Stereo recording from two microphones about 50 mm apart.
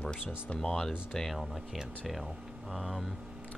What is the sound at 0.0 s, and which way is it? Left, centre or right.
Music, centre.